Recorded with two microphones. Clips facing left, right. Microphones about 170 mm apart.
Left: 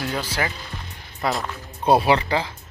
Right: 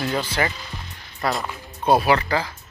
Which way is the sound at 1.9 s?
25° left (ahead or behind).